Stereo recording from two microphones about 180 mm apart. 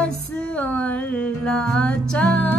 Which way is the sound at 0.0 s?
5° left (ahead or behind).